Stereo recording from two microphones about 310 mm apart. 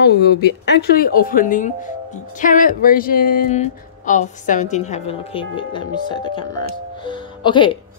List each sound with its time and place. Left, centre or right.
0.0 s speech: left; by 6.4 s centre
7.0 s music: centre